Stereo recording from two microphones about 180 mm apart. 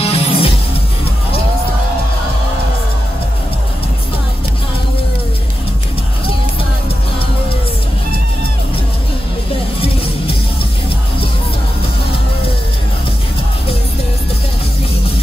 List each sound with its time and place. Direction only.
0.0 s music: 35° left (ahead or behind)